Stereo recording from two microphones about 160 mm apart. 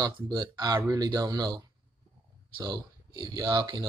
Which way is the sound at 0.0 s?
25° right (ahead or behind).